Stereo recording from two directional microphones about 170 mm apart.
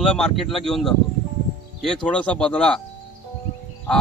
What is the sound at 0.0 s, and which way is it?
Speech, centre (ahead or behind).